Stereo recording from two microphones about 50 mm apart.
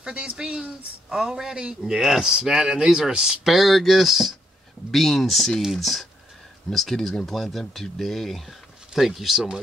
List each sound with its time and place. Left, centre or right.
0.0 s speech: right; by 9.5 s centre